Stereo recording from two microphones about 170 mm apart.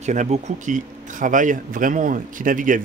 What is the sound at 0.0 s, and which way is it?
Speech, 45° right (ahead or behind).